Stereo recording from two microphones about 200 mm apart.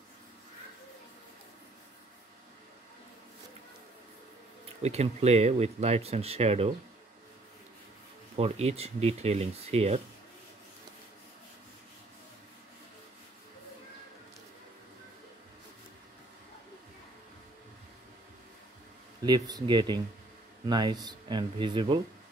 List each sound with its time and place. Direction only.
4.8 s speech: 30° right (ahead or behind)
8.4 s speech: 30° right (ahead or behind)
19.2 s speech: 20° right (ahead or behind)